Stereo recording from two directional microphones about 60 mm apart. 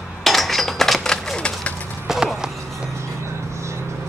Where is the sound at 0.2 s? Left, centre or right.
Centre.